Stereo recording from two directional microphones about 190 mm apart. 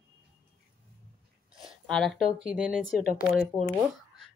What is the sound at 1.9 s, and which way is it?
Speech, centre (ahead or behind).